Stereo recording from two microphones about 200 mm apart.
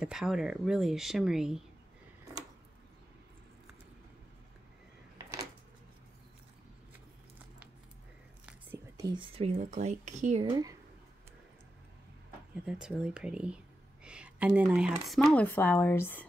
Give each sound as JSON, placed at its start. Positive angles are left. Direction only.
{"t": 0.0, "sound": "speech", "side_deg": -5}
{"t": 5.1, "sound": "a sound", "side_deg": -15}
{"t": 8.5, "sound": "whispering", "side_deg": -10}
{"t": 9.1, "sound": "speech", "side_deg": -25}
{"t": 10.4, "sound": "speech", "side_deg": -20}
{"t": 12.6, "sound": "speech", "side_deg": -5}